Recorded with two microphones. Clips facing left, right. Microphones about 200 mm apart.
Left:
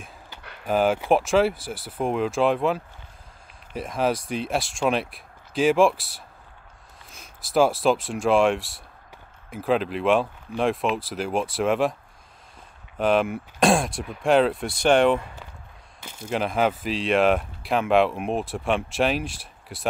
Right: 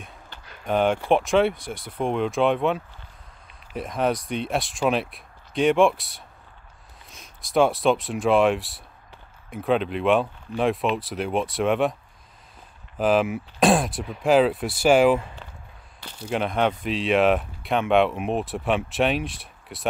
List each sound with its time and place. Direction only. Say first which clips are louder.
0.7 s speech: even; centre (ahead or behind)
12.9 s speech: right 1 dB; centre (ahead or behind)